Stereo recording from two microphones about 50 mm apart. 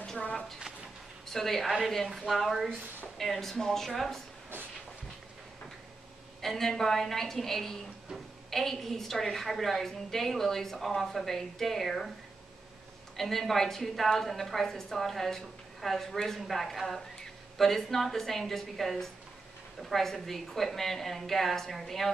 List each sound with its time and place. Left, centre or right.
0.2 s a sound: centre
1.2 s a woman's voice: centre
6.4 s a woman's voice: centre
13.1 s a woman's voice: centre